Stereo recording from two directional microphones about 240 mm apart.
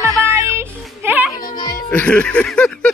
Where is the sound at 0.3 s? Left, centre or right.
Centre.